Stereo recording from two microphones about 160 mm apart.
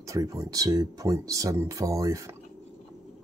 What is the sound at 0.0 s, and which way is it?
Speech, 20° right (ahead or behind).